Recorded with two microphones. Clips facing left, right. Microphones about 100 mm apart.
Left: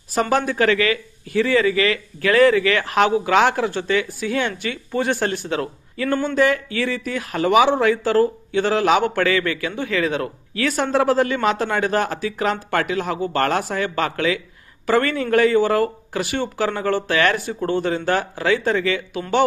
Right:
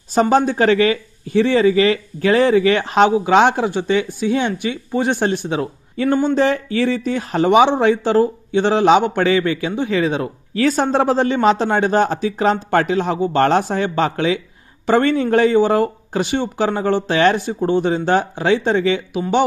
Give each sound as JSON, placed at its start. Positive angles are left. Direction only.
{"t": 0.1, "sound": "speech", "side_deg": -25}
{"t": 6.3, "sound": "speech", "side_deg": -30}